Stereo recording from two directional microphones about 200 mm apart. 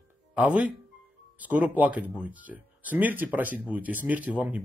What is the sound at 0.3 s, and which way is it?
Speech, 5° right (ahead or behind).